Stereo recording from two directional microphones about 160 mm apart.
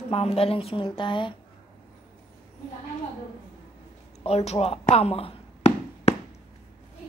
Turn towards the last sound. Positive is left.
turn(degrees=40)  # may be behind; listen again after turning